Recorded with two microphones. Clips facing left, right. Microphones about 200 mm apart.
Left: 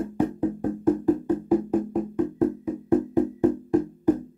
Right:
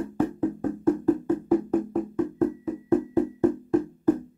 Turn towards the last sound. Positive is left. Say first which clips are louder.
# left 1 dB
turn(degrees=15)  # may be behind; listen again after turning